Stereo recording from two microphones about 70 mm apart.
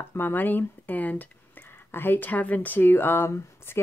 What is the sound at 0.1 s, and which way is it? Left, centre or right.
Speech, left.